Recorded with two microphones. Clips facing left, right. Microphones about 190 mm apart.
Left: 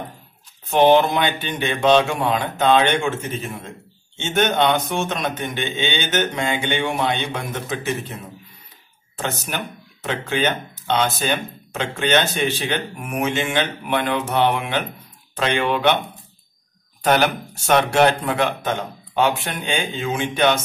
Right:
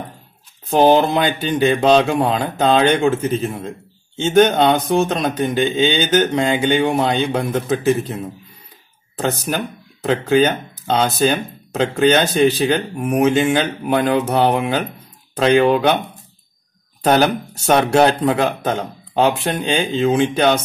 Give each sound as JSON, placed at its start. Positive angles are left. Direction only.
{"t": 0.7, "sound": "speech", "side_deg": -35}
{"t": 9.2, "sound": "speech", "side_deg": -35}
{"t": 17.1, "sound": "speech", "side_deg": -35}